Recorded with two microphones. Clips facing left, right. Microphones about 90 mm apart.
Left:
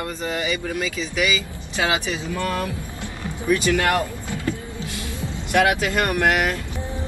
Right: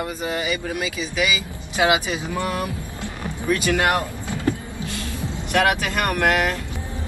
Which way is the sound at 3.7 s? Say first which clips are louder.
Even; 20° right (ahead or behind).